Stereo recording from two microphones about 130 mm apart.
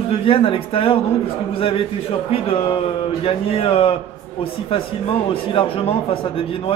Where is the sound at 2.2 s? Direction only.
45° left (ahead or behind).